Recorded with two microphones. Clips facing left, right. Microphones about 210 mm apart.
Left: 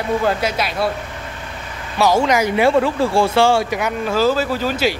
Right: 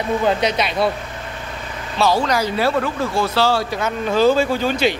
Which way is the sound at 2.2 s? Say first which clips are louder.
Left 4 dB; 20° left (ahead or behind).